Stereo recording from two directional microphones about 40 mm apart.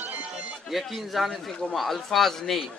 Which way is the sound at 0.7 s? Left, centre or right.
Centre.